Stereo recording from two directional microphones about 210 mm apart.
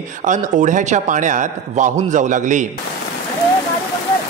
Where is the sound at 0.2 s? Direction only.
35° right (ahead or behind).